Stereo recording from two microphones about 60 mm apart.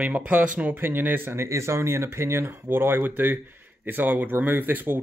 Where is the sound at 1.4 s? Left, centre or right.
Right.